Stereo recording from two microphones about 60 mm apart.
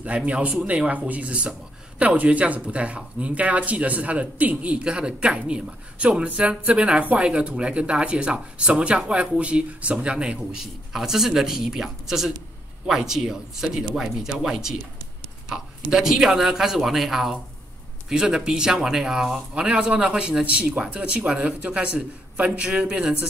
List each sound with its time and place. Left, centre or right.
0.0 s speech: centre
10.6 s a man's voice: centre